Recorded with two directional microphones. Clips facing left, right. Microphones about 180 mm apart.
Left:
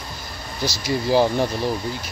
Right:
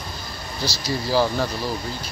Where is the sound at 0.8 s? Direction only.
20° left (ahead or behind).